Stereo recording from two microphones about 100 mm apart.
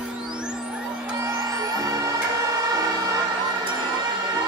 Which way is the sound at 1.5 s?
40° right (ahead or behind).